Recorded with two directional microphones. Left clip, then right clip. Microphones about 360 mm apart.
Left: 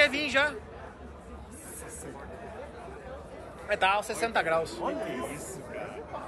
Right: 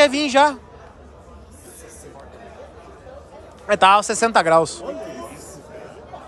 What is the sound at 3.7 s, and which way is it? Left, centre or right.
A man's voice, centre.